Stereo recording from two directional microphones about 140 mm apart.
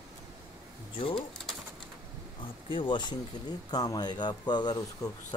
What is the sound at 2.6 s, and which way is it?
Speech, 35° left (ahead or behind).